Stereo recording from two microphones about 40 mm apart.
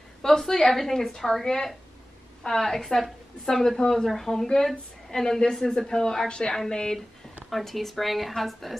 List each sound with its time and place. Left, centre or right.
0.2 s a woman's voice: centre
7.4 s speech: centre